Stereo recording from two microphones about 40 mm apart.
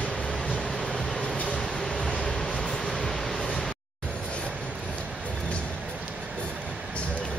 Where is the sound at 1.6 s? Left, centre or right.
Centre.